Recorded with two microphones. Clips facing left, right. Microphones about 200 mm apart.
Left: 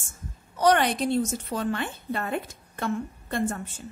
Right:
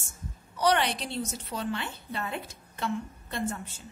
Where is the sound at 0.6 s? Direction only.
50° left (ahead or behind).